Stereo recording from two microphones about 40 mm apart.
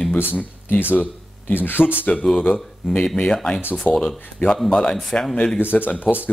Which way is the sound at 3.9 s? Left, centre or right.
Left.